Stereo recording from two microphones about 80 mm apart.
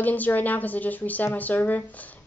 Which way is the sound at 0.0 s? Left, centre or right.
Left.